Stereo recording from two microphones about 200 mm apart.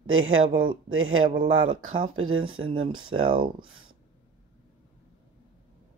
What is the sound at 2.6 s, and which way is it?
Speech, 25° right (ahead or behind).